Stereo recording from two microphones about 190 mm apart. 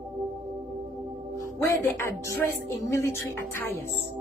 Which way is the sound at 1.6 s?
15° left (ahead or behind).